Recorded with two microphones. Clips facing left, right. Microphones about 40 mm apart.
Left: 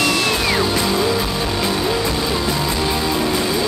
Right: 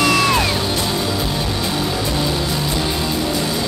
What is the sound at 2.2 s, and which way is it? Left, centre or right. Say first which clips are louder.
Music: left 1 dB; left.